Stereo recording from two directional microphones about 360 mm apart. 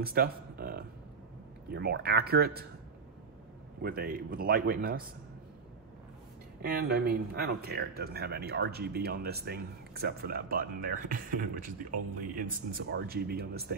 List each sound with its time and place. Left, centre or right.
0.0 s a sound: right
1.7 s speech: right
3.8 s speech: right
6.6 s speech: right